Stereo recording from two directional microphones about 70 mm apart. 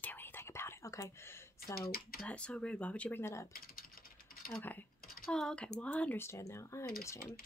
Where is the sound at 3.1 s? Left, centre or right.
Left.